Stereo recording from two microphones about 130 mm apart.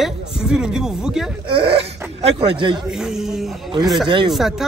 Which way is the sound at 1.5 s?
40° right (ahead or behind).